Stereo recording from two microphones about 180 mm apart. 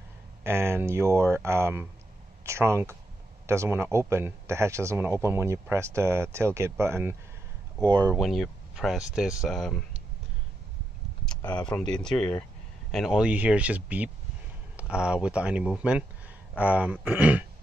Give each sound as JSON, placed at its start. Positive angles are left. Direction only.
{"t": 0.4, "sound": "speech", "side_deg": -15}
{"t": 8.2, "sound": "speech", "side_deg": 0}
{"t": 11.9, "sound": "speech", "side_deg": 5}